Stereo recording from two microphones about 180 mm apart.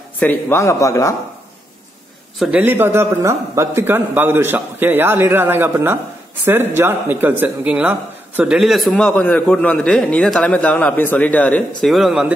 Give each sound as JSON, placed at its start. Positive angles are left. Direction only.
{"t": 0.2, "sound": "a man's voice", "side_deg": 10}
{"t": 2.3, "sound": "a man's voice", "side_deg": -5}